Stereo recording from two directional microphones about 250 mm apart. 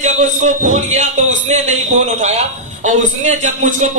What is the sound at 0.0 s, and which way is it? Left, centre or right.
Speech, right.